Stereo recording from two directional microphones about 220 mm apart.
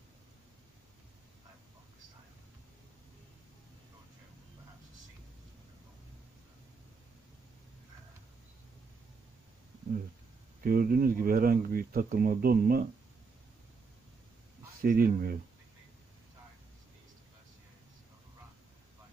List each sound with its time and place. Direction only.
10.6 s speech: 40° right (ahead or behind)
14.8 s speech: 40° right (ahead or behind)